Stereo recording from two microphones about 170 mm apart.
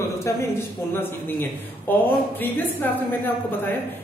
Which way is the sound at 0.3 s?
15° left (ahead or behind).